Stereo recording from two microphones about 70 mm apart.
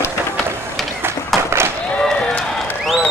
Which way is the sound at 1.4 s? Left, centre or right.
Right.